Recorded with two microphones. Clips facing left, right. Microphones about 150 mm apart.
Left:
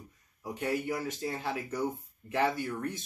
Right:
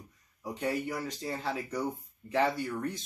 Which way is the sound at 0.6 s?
Centre (ahead or behind).